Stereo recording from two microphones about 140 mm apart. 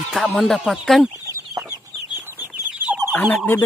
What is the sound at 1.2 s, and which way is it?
Chicken, 25° right (ahead or behind).